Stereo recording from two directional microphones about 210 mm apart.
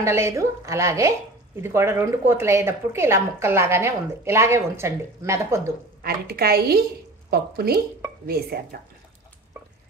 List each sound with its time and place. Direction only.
0.0 s speech: 15° right (ahead or behind)
6.0 s a woman's voice: 45° right (ahead or behind)